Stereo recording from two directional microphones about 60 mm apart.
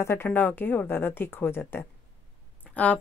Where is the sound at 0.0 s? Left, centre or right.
Left.